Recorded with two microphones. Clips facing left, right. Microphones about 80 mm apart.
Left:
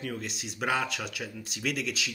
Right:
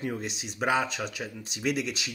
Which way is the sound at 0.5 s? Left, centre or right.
Centre.